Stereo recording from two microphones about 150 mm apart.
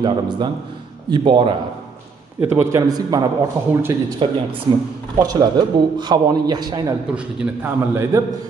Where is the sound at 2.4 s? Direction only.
15° right (ahead or behind).